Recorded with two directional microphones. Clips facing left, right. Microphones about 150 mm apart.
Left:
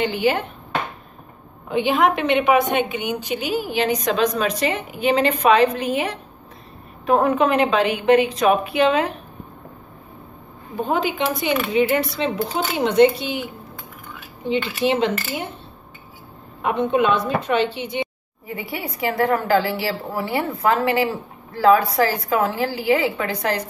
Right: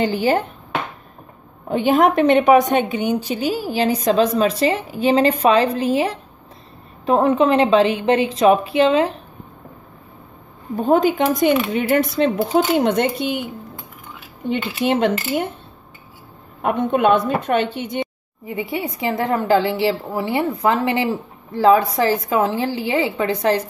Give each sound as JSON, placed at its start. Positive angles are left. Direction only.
{"t": 0.0, "sound": "a woman's voice", "side_deg": -40}
{"t": 1.7, "sound": "a woman's voice", "side_deg": -40}
{"t": 10.9, "sound": "a woman's voice", "side_deg": -45}
{"t": 14.5, "sound": "a woman's voice", "side_deg": -50}
{"t": 16.6, "sound": "a woman's voice", "side_deg": -50}
{"t": 18.6, "sound": "a woman's voice", "side_deg": -20}